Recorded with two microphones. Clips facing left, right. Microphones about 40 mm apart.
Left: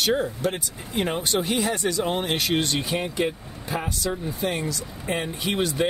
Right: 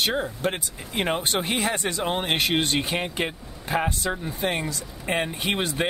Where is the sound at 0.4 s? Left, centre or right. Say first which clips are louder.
Even; right.